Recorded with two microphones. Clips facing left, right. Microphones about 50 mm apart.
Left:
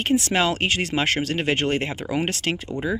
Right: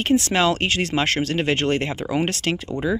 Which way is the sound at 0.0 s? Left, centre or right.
Centre.